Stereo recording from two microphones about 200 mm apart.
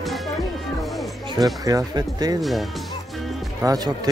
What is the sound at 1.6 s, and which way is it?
Speech, 20° right (ahead or behind).